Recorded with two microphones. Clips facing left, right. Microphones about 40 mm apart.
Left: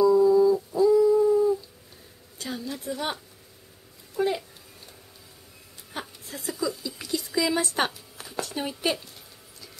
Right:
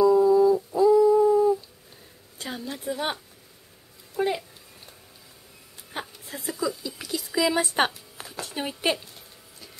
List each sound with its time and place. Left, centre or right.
0.0 s humming: centre
2.3 s a sound: right
5.9 s speech: centre
8.3 s speech: centre